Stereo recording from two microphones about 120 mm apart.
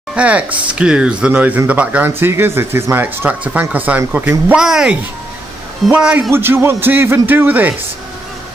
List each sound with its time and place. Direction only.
0.1 s speech: 10° right (ahead or behind)
6.3 s a man's voice: 20° right (ahead or behind)